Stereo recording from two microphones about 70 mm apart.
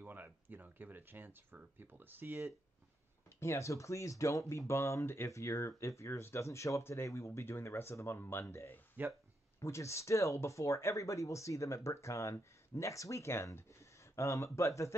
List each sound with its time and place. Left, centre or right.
0.0 s speech: right
3.3 s speech: left